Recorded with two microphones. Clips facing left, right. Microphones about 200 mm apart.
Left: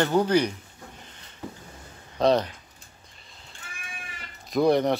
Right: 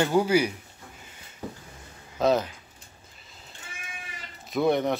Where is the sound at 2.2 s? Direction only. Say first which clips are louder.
Left 2 dB; 5° right (ahead or behind).